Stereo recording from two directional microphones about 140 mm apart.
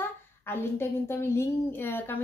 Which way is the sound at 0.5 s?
15° left (ahead or behind).